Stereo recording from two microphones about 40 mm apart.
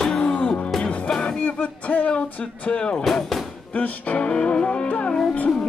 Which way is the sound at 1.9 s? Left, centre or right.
Left.